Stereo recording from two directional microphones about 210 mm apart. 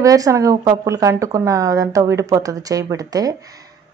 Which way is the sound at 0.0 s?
15° right (ahead or behind).